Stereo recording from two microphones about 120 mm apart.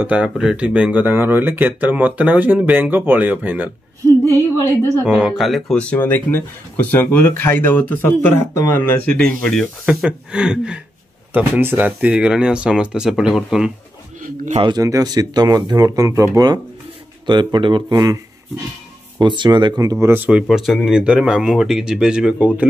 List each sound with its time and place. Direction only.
0.0 s speech: 10° right (ahead or behind)
5.0 s speech: 5° right (ahead or behind)
9.8 s speech: 5° right (ahead or behind)
14.8 s speech: 30° right (ahead or behind)
17.3 s speech: 40° right (ahead or behind)
20.2 s speech: 5° right (ahead or behind)